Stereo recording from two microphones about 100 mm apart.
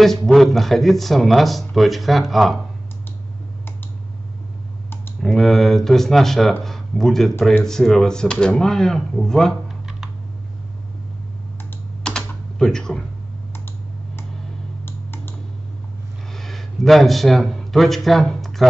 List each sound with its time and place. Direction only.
0.3 s speech: centre (ahead or behind)
5.2 s speech: centre (ahead or behind)
12.0 s typing: 5° left (ahead or behind)
14.9 s computer keyboard: 20° left (ahead or behind)
16.3 s a man's voice: 5° left (ahead or behind)